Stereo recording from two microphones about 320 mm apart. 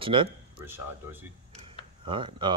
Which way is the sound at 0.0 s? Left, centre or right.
Centre.